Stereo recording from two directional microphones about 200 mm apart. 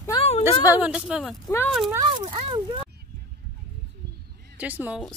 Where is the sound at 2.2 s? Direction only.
25° right (ahead or behind).